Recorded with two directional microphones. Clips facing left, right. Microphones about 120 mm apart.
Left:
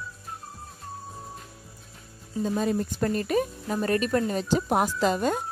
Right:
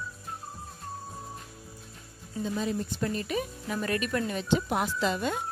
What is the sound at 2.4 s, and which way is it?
Speech, 45° left (ahead or behind).